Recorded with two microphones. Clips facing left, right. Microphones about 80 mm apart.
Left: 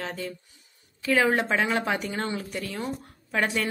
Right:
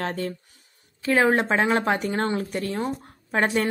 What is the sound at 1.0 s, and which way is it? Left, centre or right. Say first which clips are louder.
A woman's voice: right 3 dB; right.